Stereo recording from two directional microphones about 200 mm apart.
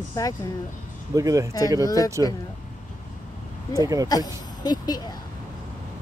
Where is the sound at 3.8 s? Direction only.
15° right (ahead or behind).